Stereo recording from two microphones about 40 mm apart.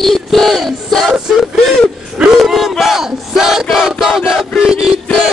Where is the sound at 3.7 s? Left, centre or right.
Centre.